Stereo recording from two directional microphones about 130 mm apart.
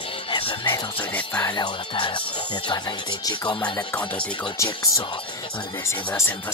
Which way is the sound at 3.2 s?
30° left (ahead or behind).